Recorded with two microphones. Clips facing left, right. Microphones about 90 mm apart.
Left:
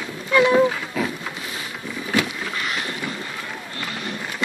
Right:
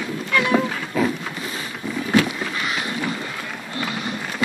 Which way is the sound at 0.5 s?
5° right (ahead or behind).